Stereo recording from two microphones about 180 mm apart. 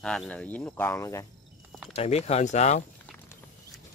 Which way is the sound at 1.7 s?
5° right (ahead or behind).